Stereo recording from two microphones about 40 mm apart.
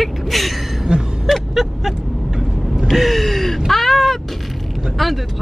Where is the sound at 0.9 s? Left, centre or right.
Right.